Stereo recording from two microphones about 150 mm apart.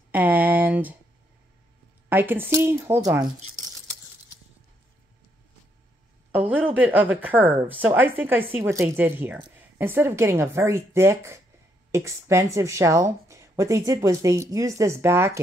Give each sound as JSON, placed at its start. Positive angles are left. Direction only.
{"t": 0.1, "sound": "a sound", "side_deg": -10}
{"t": 2.0, "sound": "speech", "side_deg": -15}
{"t": 6.3, "sound": "speech", "side_deg": -10}